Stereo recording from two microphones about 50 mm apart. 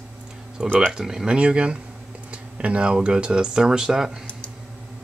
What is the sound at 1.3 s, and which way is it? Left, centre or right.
Speech, right.